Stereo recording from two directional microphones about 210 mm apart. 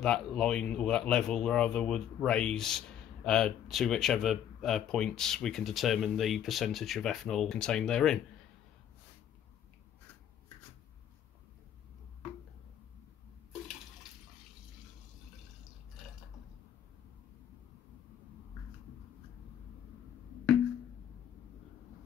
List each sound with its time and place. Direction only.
0.0 s speech: 5° left (ahead or behind)